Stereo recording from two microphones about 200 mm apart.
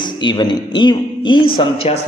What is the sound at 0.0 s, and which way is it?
A man's voice, 20° left (ahead or behind).